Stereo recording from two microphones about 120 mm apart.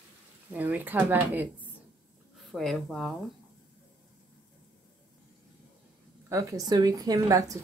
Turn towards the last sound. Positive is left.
turn(degrees=-30)  # may be behind; listen again after turning